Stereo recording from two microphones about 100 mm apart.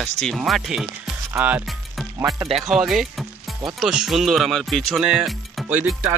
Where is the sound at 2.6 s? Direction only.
Centre (ahead or behind).